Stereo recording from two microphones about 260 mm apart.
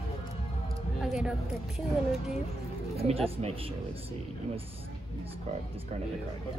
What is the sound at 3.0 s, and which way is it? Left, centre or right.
Speech, right.